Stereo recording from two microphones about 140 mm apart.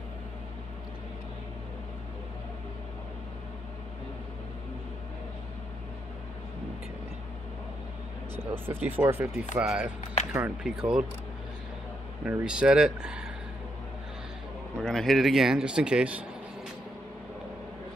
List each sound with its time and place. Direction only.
8.4 s a man's voice: 15° right (ahead or behind)
12.3 s speech: 10° right (ahead or behind)
14.8 s a man's voice: centre (ahead or behind)